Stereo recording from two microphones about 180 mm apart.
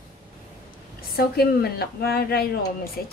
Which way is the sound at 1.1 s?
60° left (ahead or behind).